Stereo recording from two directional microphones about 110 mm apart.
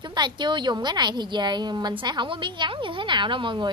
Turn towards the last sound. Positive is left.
turn(degrees=-45)  # may be behind; listen again after turning